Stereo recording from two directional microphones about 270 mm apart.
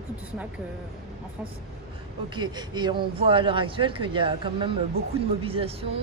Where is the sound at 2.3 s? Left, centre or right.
Centre.